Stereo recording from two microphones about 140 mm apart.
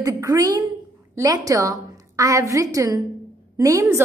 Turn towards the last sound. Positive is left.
turn(degrees=-20)  # may be behind; listen again after turning